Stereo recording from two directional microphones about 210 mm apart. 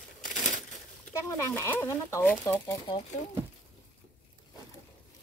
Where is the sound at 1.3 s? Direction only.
15° left (ahead or behind).